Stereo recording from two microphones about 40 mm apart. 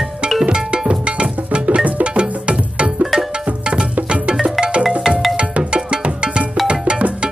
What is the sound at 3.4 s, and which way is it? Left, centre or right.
Music, right.